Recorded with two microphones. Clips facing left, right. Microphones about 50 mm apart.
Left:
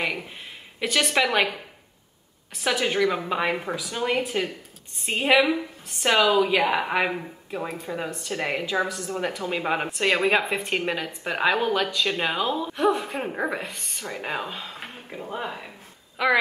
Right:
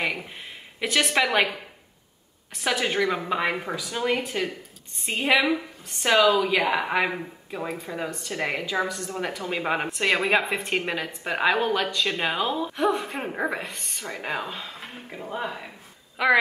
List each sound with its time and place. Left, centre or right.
0.0 s a woman's voice: centre
2.5 s a woman's voice: centre
6.1 s a woman's voice: left
6.7 s a woman's voice: centre